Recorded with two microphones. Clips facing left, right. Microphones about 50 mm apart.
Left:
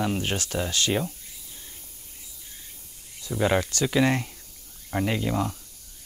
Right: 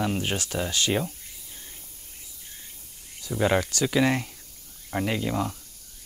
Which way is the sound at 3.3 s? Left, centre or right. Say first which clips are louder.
Even; centre.